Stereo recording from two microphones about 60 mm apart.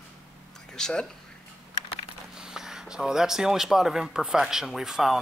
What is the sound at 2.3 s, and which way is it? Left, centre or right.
Speech, centre.